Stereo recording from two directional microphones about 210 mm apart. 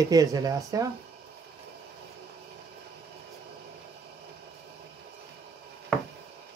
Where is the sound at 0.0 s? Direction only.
15° right (ahead or behind).